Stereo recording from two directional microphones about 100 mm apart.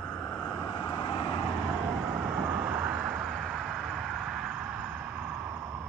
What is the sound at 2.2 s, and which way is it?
Vehicle, 10° right (ahead or behind).